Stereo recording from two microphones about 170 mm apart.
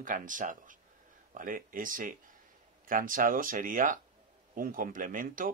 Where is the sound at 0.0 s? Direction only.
50° right (ahead or behind).